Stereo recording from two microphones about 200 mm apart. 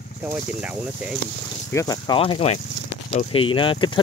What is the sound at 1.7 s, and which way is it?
Speech, 15° left (ahead or behind).